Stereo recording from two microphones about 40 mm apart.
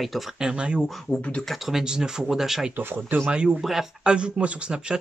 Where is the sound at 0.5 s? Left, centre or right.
Right.